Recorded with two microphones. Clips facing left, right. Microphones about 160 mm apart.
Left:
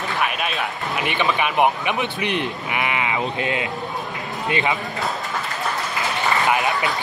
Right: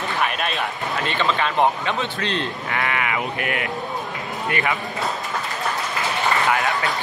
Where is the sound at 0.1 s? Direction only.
5° left (ahead or behind).